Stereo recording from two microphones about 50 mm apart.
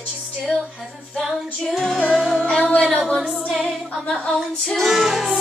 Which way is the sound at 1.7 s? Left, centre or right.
Centre.